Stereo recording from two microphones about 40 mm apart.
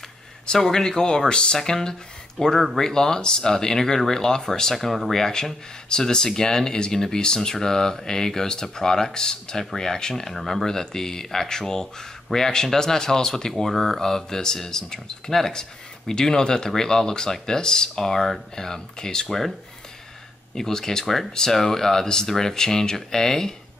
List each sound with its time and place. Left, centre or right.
0.6 s speech: centre
4.7 s speech: centre
5.2 s speech: centre
10.3 s speech: centre
20.5 s speech: centre